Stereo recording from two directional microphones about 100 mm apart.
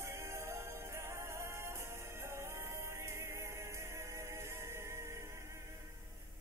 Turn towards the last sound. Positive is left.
turn(degrees=-25)  # may be behind; listen again after turning